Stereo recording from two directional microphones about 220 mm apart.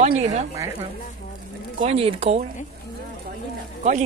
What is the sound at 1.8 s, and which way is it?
Speech, 25° right (ahead or behind).